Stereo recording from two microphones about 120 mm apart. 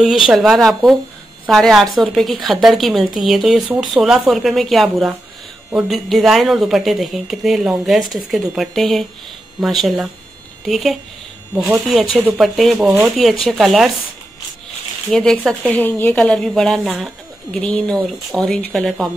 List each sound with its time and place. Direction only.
0.3 s a woman's voice: centre (ahead or behind)
12.7 s speech: 15° right (ahead or behind)
13.0 s a woman's voice: centre (ahead or behind)
15.0 s a woman's voice: 5° left (ahead or behind)
15.7 s speech: 15° left (ahead or behind)